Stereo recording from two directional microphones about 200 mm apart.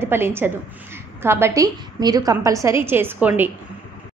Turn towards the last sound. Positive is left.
turn(degrees=-10)  # may be behind; listen again after turning